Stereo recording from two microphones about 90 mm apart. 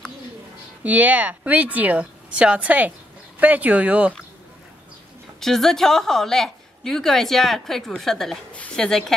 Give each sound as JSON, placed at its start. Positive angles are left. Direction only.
{"t": 0.8, "sound": "a woman's voice", "side_deg": -20}
{"t": 5.4, "sound": "a woman's voice", "side_deg": 5}